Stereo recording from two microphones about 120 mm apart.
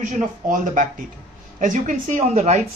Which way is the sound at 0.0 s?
90° right.